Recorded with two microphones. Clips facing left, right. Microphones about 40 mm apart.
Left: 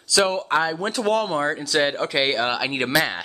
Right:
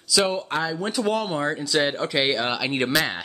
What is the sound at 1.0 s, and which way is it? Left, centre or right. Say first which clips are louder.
Speech: left 4 dB; centre.